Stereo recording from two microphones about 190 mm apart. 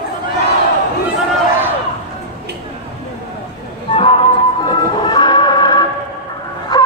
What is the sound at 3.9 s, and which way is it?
Music, 30° left (ahead or behind).